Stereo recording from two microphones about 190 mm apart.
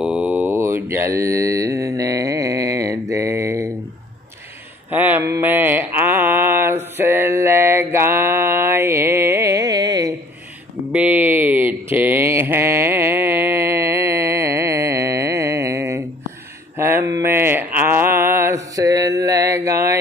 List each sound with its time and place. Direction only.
0.0 s mantra: 5° right (ahead or behind)
4.9 s mantra: 10° right (ahead or behind)
10.9 s a sound: 10° right (ahead or behind)
16.7 s mantra: 15° right (ahead or behind)